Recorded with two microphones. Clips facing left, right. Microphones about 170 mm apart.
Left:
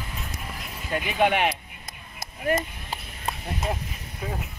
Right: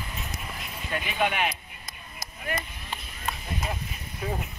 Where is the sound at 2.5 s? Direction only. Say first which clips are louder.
Left 8 dB; 40° left (ahead or behind).